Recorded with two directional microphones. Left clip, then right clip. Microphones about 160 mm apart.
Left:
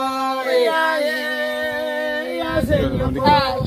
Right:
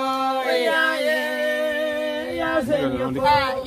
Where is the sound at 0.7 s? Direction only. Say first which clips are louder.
Left 2 dB; 10° right (ahead or behind).